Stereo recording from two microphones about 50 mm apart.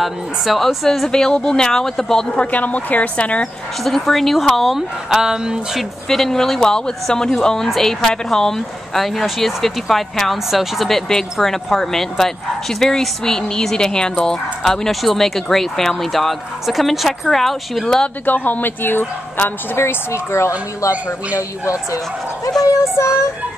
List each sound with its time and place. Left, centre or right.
0.0 s speech: centre
2.3 s speech: left
3.8 s speech: centre
4.7 s speech: centre
6.0 s speech: centre
17.8 s speech: centre
18.2 s speech: left
19.8 s speech: left